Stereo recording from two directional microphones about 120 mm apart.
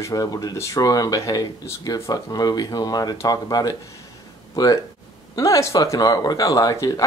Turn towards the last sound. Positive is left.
turn(degrees=30)  # may be behind; listen again after turning